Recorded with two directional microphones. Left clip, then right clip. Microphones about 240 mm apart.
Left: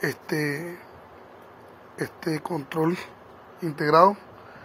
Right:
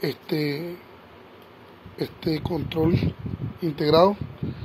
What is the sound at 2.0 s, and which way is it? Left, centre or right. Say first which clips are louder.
Speech: right 2 dB; right.